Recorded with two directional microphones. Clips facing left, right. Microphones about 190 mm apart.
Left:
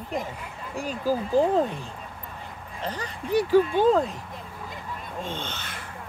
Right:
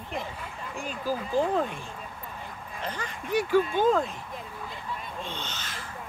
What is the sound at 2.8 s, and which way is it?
Speech, 35° left (ahead or behind).